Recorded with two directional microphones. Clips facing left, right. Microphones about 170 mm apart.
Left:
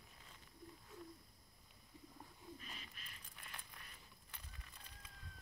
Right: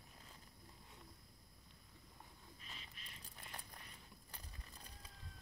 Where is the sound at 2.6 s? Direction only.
30° right (ahead or behind).